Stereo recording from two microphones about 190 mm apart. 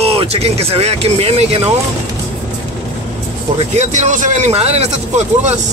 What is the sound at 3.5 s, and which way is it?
Speech, 35° right (ahead or behind).